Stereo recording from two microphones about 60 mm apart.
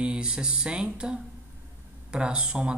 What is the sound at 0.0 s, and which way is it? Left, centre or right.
A man's voice, centre.